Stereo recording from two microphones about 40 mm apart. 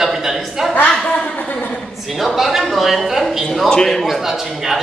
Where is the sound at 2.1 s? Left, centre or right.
Centre.